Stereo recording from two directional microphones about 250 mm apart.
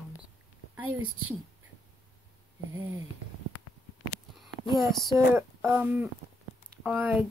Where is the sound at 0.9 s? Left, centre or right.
Right.